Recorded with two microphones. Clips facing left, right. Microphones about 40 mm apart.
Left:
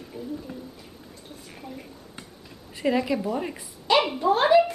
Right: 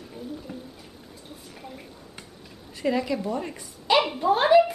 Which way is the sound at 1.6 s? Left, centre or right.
Centre.